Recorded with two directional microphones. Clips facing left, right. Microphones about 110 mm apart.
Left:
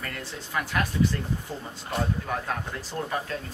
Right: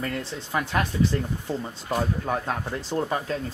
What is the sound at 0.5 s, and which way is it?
Speech, 25° right (ahead or behind).